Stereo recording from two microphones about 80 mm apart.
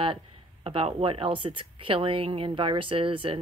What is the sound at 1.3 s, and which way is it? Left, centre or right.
A woman's voice, right.